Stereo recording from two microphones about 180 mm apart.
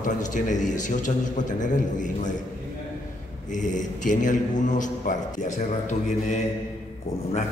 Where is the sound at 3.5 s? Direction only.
45° left (ahead or behind).